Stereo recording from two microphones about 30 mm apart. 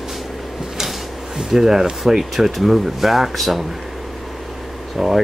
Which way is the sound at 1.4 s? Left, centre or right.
Centre.